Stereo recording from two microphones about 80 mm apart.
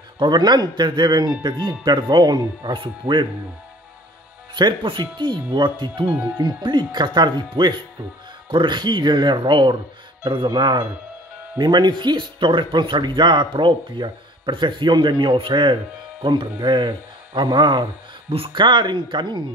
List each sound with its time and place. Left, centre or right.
0.2 s speech: right
4.6 s speech: right
6.3 s speech: right